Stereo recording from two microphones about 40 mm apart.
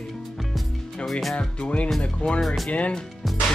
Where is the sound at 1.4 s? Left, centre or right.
Left.